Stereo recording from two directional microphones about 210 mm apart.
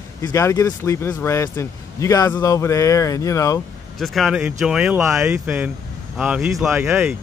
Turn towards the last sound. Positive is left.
turn(degrees=-5)  # may be behind; listen again after turning